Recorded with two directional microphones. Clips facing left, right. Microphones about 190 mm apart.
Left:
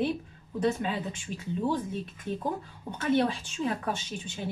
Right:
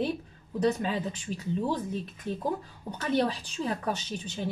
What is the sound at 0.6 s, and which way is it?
Speech, 40° right (ahead or behind).